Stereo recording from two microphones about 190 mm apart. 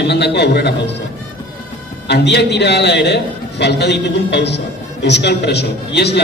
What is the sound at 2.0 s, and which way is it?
A man's voice, 60° left (ahead or behind).